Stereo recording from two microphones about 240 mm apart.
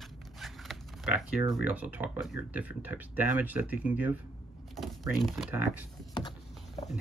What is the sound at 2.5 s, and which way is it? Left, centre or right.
Speech, centre.